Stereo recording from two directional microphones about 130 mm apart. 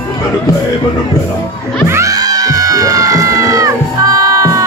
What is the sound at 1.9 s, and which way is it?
Music, 25° right (ahead or behind).